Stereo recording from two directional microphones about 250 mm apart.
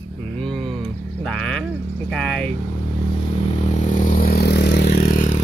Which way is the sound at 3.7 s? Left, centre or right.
Left.